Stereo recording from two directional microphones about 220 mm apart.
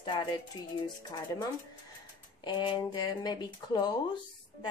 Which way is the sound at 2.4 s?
20° left (ahead or behind).